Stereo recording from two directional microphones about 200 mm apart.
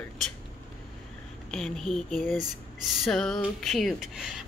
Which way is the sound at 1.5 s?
Centre (ahead or behind).